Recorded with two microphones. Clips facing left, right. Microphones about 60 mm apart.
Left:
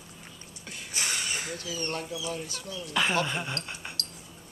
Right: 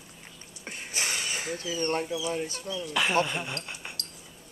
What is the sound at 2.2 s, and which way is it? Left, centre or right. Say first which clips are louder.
Speech: right 4 dB; right.